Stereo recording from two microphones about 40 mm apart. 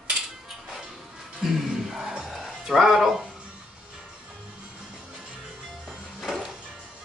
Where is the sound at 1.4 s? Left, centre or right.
Centre.